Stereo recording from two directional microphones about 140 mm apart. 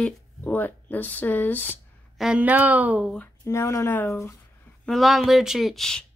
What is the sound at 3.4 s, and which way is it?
Speech, 20° left (ahead or behind).